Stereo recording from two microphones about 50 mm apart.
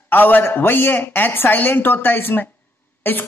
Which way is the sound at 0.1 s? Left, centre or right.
Left.